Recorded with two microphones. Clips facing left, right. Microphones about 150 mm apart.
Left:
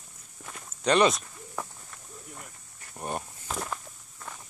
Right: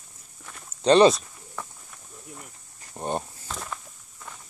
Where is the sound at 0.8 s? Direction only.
30° right (ahead or behind).